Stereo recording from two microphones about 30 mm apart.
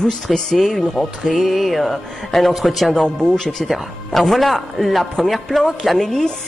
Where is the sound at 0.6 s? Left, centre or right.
Centre.